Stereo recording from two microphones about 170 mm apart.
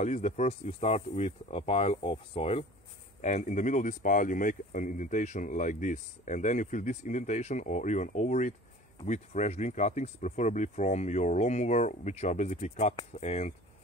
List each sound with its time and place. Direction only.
0.0 s speech: 45° left (ahead or behind)